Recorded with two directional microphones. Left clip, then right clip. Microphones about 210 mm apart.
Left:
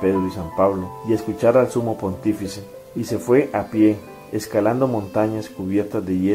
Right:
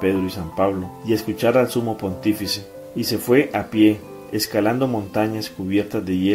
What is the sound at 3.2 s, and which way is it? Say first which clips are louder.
Speech: left 1 dB; 40° right (ahead or behind).